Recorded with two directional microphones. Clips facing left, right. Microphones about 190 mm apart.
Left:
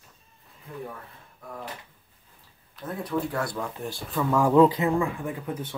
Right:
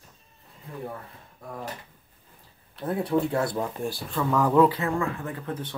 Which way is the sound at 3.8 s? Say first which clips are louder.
Right 3 dB; 10° right (ahead or behind).